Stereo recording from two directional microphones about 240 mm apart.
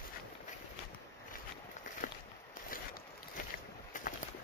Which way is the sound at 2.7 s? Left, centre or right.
Left.